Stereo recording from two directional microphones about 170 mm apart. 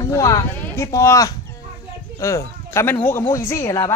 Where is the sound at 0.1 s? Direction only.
20° left (ahead or behind).